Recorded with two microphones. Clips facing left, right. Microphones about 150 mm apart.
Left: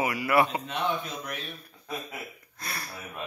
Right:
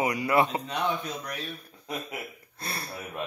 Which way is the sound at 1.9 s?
25° right (ahead or behind).